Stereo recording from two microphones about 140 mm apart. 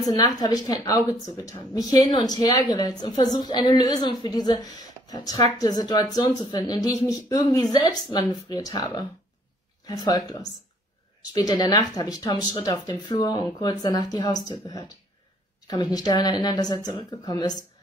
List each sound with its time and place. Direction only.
0.0 s speech: 25° left (ahead or behind)